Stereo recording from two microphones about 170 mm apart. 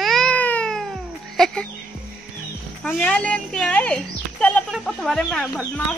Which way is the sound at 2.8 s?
5° left (ahead or behind).